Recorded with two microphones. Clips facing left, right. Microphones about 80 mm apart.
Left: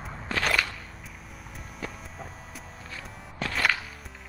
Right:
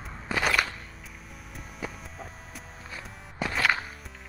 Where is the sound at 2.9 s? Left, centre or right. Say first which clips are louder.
Even; centre.